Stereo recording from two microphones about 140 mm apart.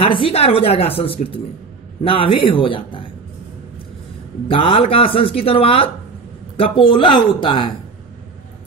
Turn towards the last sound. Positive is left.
turn(degrees=35)  # may be behind; listen again after turning